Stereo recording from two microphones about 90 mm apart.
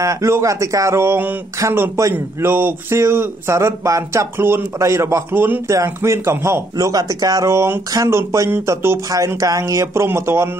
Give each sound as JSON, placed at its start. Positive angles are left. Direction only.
{"t": 0.0, "sound": "speech", "side_deg": -35}
{"t": 6.9, "sound": "speech", "side_deg": -45}
{"t": 7.4, "sound": "speech", "side_deg": -30}